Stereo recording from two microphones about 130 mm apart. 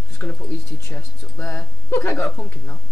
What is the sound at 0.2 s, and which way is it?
Speech, 20° left (ahead or behind).